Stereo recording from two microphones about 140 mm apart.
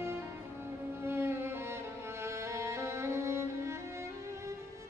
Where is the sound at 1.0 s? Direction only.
15° right (ahead or behind).